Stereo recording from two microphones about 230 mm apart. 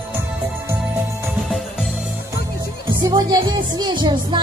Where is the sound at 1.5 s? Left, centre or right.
Centre.